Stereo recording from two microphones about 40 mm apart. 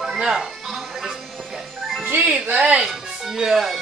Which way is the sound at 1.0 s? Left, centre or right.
Centre.